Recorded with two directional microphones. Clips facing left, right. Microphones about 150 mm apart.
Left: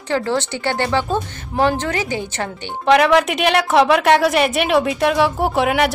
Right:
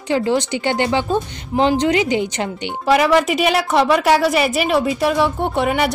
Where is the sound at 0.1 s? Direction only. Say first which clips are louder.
Right 2 dB; 15° right (ahead or behind).